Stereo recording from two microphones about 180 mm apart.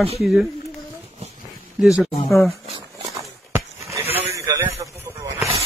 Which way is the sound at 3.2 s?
15° right (ahead or behind).